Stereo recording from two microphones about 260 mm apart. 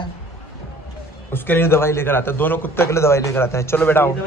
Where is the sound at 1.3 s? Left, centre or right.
Centre.